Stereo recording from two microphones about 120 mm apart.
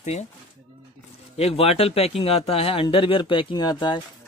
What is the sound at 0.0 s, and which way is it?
Speech, 70° left (ahead or behind).